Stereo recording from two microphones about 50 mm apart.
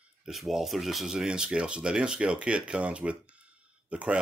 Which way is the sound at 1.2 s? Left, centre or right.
Centre.